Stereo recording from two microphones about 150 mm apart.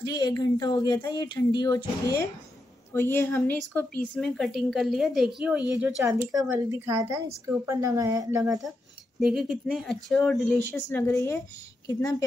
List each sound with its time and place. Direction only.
0.0 s speech: 25° left (ahead or behind)
2.9 s a woman's voice: 15° left (ahead or behind); by 5.7 s 10° right (ahead or behind)
6.5 s a woman's voice: 20° right (ahead or behind)
9.2 s speech: centre (ahead or behind); by 12.3 s 25° left (ahead or behind)